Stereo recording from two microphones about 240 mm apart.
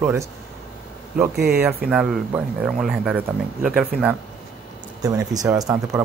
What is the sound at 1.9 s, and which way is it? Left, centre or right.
Speech, centre.